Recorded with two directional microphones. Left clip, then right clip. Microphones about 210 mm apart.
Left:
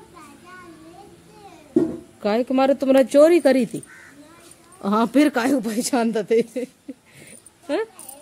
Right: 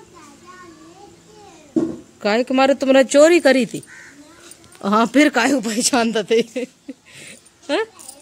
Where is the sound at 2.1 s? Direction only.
Centre (ahead or behind).